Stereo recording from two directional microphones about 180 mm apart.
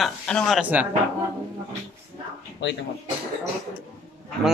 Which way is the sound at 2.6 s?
80° left.